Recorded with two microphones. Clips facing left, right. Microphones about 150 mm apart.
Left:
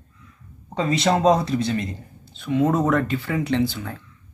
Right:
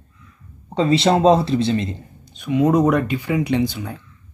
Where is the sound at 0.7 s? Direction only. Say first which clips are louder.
Right 4 dB; 30° right (ahead or behind).